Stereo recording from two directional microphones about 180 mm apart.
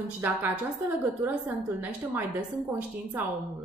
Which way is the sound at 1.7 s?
10° right (ahead or behind).